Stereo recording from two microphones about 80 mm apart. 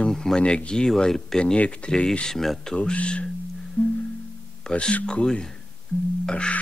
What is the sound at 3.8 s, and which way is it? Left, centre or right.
Music, centre.